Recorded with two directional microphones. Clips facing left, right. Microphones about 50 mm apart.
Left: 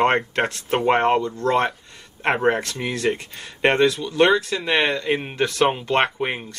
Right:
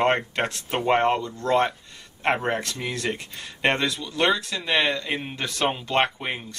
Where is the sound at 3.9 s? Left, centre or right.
Left.